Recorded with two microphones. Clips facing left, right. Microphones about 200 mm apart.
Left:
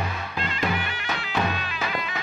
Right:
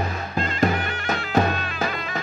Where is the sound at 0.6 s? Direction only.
45° right (ahead or behind).